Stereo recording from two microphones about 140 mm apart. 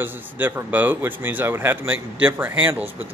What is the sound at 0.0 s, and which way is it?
Speech, 15° right (ahead or behind).